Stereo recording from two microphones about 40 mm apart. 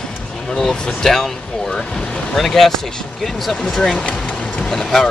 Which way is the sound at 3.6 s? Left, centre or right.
Centre.